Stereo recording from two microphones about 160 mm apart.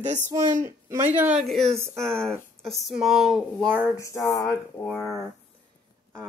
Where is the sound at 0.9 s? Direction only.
10° right (ahead or behind).